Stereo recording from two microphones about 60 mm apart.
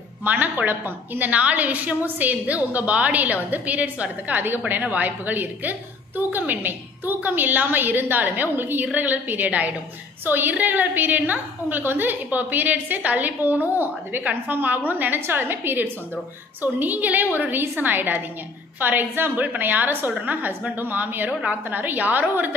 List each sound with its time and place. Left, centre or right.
0.2 s a woman's voice: right